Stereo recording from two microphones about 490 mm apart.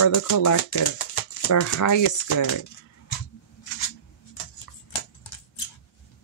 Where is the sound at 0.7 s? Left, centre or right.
Left.